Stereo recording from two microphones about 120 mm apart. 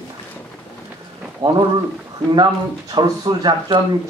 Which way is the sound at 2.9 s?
35° right (ahead or behind).